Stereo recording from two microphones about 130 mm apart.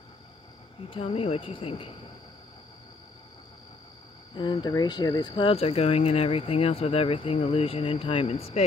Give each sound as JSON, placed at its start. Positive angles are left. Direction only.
{"t": 0.8, "sound": "speech", "side_deg": 45}
{"t": 4.4, "sound": "speech", "side_deg": 35}